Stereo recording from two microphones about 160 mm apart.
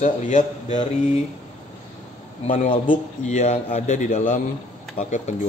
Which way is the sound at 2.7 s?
30° left (ahead or behind).